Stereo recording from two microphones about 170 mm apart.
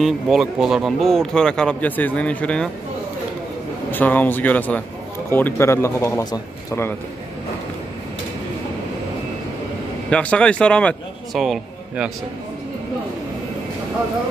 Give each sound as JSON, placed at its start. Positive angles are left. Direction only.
{"t": 0.0, "sound": "a man's voice", "side_deg": 0}
{"t": 3.9, "sound": "a man's voice", "side_deg": 10}
{"t": 10.0, "sound": "a man's voice", "side_deg": 5}